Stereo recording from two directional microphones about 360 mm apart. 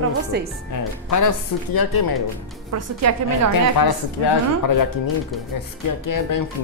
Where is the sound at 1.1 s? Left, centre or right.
Left.